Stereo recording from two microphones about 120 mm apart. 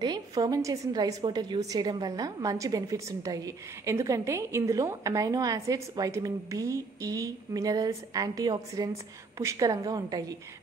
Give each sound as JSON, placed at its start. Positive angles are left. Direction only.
{"t": 0.0, "sound": "a woman's voice", "side_deg": -35}